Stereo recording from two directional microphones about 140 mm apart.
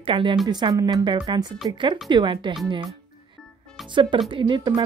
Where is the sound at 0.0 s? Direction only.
35° right (ahead or behind).